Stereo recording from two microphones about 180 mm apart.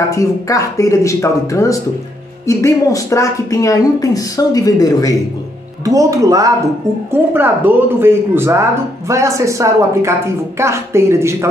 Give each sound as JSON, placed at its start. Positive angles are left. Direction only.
{"t": 0.1, "sound": "speech", "side_deg": 20}
{"t": 5.9, "sound": "speech", "side_deg": -20}